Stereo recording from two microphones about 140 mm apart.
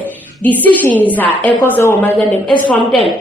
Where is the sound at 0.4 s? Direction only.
10° left (ahead or behind).